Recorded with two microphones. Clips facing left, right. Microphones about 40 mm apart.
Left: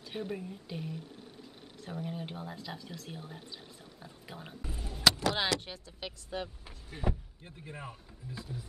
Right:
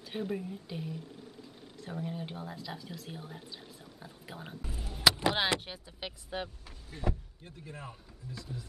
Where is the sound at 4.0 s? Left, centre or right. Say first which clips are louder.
Right 1 dB; centre.